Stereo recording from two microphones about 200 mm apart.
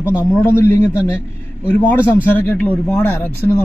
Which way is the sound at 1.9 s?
10° left (ahead or behind).